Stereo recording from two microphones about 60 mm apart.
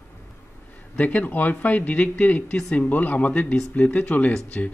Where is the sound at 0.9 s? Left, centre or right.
Left.